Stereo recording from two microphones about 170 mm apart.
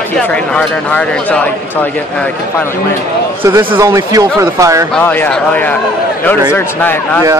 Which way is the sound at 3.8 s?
20° right (ahead or behind).